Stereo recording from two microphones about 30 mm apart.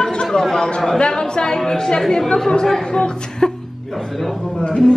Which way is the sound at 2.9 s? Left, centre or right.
Left.